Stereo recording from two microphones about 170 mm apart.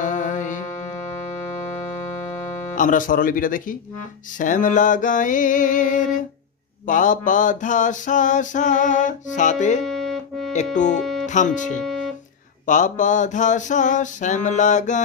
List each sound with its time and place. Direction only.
0.0 s music: 50° left (ahead or behind)
2.7 s a sound: 50° left (ahead or behind)
9.8 s music: centre (ahead or behind)
10.5 s speech: 45° left (ahead or behind)
11.0 s music: centre (ahead or behind)
11.2 s a sound: 45° left (ahead or behind)